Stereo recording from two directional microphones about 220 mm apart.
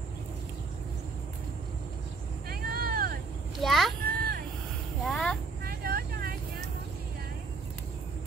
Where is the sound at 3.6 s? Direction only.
Centre (ahead or behind).